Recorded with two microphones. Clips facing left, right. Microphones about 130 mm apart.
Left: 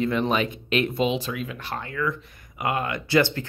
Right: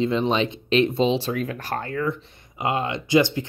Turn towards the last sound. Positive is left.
turn(degrees=-15)  # may be behind; listen again after turning